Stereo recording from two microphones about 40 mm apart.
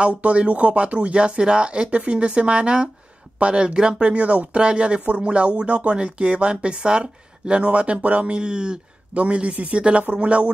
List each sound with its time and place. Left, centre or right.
0.2 s speech: right
4.1 s speech: right
9.1 s speech: right